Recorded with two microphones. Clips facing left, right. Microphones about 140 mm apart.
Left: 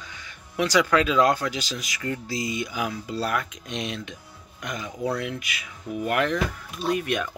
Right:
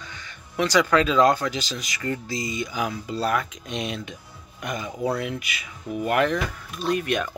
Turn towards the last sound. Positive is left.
turn(degrees=0)  # may be behind; listen again after turning